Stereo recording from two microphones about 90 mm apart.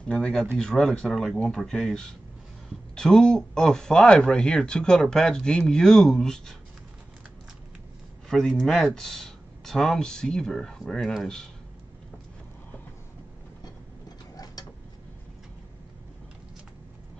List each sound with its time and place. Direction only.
0.1 s speech: 5° left (ahead or behind)
8.3 s speech: 5° left (ahead or behind)
14.0 s mechanisms: 45° left (ahead or behind)